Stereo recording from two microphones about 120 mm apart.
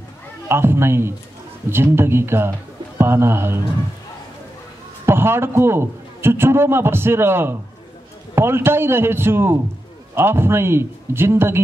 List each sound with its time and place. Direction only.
0.5 s a man's voice: 20° right (ahead or behind)
5.0 s a man's voice: 20° right (ahead or behind)